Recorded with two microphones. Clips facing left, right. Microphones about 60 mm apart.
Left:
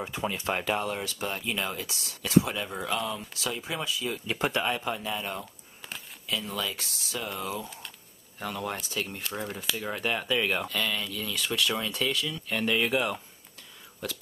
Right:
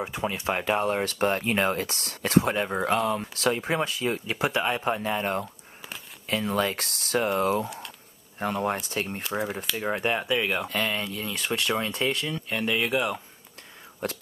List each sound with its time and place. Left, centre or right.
0.0 s speech: centre
0.7 s speech: right
3.0 s speech: right
4.3 s speech: centre
4.8 s speech: right
5.4 s a sound: centre
6.2 s speech: right
8.4 s speech: right
9.2 s speech: centre
9.8 s speech: right
10.2 s speech: centre
10.7 s speech: right
12.4 s speech: centre
14.0 s speech: right